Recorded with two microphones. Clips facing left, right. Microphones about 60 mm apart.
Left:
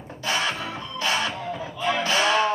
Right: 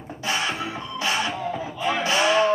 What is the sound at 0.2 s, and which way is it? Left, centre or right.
Music, centre.